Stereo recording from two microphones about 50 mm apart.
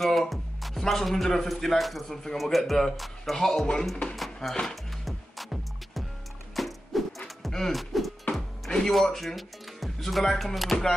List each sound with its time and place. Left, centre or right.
0.0 s a man's voice: centre
5.0 s music: centre
8.4 s speech: centre